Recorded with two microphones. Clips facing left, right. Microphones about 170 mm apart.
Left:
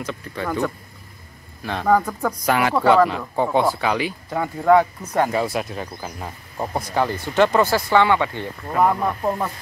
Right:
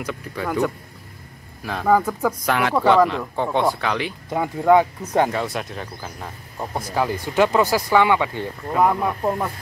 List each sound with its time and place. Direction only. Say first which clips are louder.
0.4 s speech: right 1 dB; 10° right (ahead or behind)
4.3 s speech: even; 15° right (ahead or behind)
5.3 s speech: left 3 dB; 5° left (ahead or behind)